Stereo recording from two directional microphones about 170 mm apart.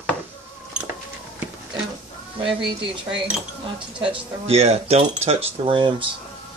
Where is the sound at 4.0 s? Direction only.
35° right (ahead or behind).